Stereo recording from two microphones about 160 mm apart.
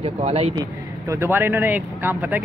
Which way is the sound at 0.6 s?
20° right (ahead or behind).